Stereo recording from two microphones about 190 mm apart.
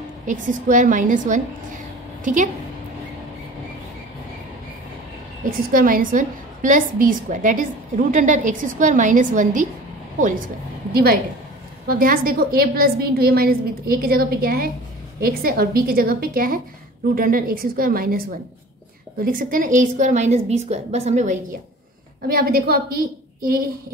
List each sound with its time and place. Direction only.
0.3 s a woman's voice: 45° right (ahead or behind)
5.7 s a woman's voice: 45° right (ahead or behind)
10.9 s a woman's voice: 55° right (ahead or behind)
19.2 s a woman's voice: 45° right (ahead or behind)
22.3 s a woman's voice: 50° right (ahead or behind)